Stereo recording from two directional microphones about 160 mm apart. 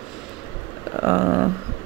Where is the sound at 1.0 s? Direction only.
15° right (ahead or behind).